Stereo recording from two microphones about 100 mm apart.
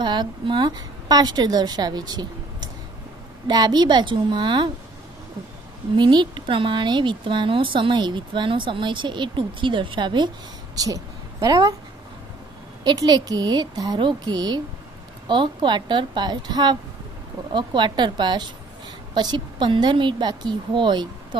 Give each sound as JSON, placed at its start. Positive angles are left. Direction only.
{"t": 0.0, "sound": "a woman's voice", "side_deg": -45}
{"t": 5.9, "sound": "a woman's voice", "side_deg": -50}
{"t": 10.8, "sound": "a woman's voice", "side_deg": -40}
{"t": 12.8, "sound": "a woman's voice", "side_deg": -45}